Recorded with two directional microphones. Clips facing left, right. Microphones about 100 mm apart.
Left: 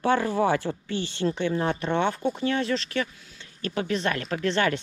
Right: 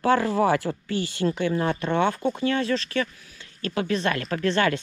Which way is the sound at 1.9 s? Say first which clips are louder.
Right 3 dB; 50° right (ahead or behind).